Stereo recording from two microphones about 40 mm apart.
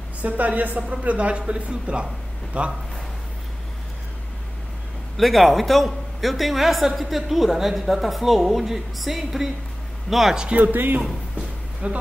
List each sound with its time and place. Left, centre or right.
0.2 s a woman's voice: right
5.1 s speech: centre
10.5 s speech: right
11.8 s a woman's voice: right